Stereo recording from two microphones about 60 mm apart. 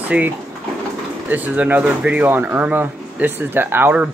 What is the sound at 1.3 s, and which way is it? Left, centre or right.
Speech, right.